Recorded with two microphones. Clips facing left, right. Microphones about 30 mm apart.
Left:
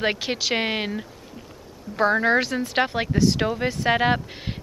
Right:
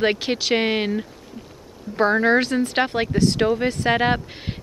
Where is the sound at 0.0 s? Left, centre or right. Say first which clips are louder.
Right 3 dB; centre.